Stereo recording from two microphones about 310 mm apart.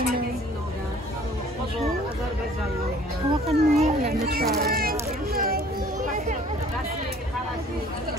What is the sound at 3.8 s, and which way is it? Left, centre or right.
A child's voice, right.